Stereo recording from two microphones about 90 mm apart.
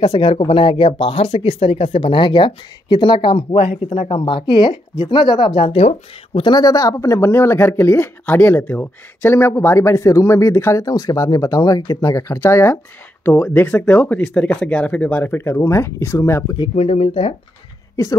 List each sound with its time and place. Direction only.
0.2 s speech: 85° left
6.5 s speech: 40° left (ahead or behind)
16.5 s speech: 80° left